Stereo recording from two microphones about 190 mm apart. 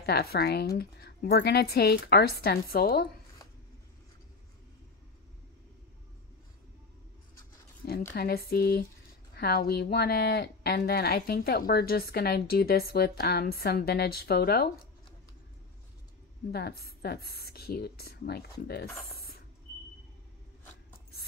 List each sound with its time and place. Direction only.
0.0 s a woman's voice: 55° left (ahead or behind)
8.1 s a woman's voice: 55° left (ahead or behind)
16.5 s a woman's voice: 55° left (ahead or behind)
19.1 s a sound: 55° left (ahead or behind)